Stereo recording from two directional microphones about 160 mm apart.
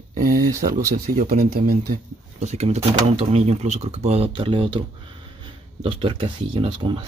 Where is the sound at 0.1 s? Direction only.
60° right (ahead or behind).